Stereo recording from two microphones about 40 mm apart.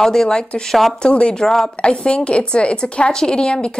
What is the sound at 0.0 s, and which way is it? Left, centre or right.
Speech, centre.